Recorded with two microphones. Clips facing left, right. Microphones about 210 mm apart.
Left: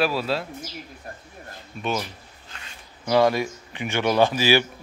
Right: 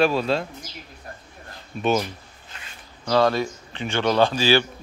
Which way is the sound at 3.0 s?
15° left (ahead or behind).